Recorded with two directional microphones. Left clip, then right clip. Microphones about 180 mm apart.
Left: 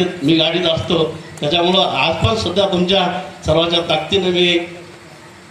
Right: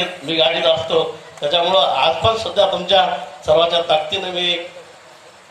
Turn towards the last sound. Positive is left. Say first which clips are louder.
# left 5 dB
turn(degrees=-55)  # may be behind; listen again after turning